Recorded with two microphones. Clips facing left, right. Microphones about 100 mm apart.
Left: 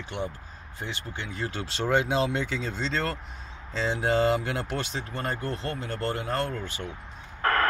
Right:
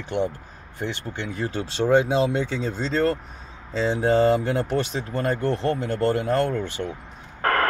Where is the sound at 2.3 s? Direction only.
30° right (ahead or behind).